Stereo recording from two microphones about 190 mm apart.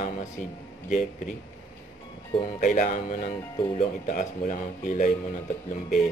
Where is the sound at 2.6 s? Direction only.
45° left (ahead or behind).